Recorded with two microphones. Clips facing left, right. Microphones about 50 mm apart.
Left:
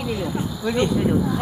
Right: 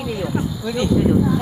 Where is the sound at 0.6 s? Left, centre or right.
Left.